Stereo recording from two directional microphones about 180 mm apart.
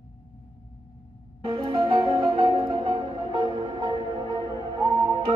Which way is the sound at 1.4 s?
25° right (ahead or behind).